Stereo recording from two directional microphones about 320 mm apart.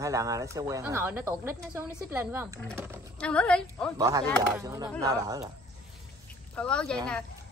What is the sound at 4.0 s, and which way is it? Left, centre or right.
Speech, centre.